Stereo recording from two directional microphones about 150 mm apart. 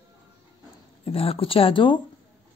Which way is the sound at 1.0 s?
40° left (ahead or behind).